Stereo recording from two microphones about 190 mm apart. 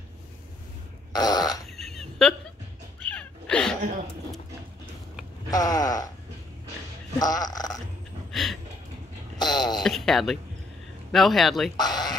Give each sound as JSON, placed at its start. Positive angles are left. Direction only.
{"t": 1.1, "sound": "fart", "side_deg": 20}
{"t": 1.7, "sound": "a sound", "side_deg": 0}
{"t": 3.1, "sound": "cat", "side_deg": 5}
{"t": 5.5, "sound": "speech", "side_deg": 20}
{"t": 7.2, "sound": "speech", "side_deg": 20}
{"t": 8.3, "sound": "a sound", "side_deg": 0}
{"t": 9.4, "sound": "speech", "side_deg": 20}
{"t": 9.8, "sound": "speech", "side_deg": 0}
{"t": 11.7, "sound": "a sound", "side_deg": 20}